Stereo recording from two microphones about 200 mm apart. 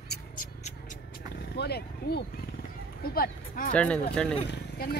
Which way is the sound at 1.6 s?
55° left (ahead or behind).